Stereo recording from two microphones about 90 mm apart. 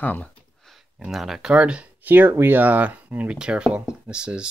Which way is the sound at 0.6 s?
Centre (ahead or behind).